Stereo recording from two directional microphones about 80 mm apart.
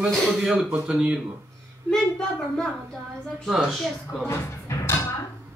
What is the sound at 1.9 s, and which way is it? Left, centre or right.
A woman's voice, centre.